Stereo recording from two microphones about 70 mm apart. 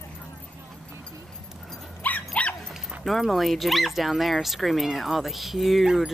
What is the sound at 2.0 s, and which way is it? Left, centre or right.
Dog, left.